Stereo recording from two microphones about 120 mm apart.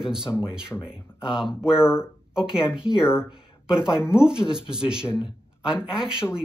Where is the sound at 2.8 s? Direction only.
5° right (ahead or behind).